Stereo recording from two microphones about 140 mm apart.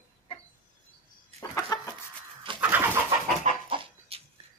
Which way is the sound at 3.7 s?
40° right (ahead or behind).